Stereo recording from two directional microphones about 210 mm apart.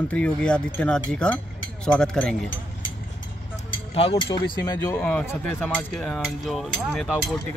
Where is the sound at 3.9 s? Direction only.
25° left (ahead or behind).